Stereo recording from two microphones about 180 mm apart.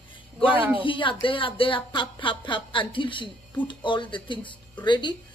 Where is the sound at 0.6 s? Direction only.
10° right (ahead or behind).